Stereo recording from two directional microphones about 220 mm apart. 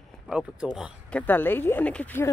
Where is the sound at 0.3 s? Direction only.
Centre (ahead or behind).